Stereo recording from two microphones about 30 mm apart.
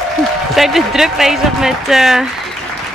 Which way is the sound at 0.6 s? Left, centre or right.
Centre.